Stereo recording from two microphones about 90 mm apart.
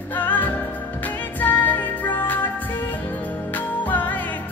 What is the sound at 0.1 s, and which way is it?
Music, 20° left (ahead or behind).